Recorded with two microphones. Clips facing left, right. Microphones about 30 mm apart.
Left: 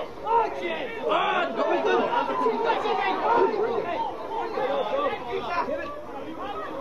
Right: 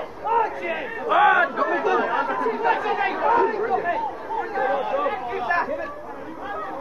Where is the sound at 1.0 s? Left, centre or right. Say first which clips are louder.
Right 7 dB; right.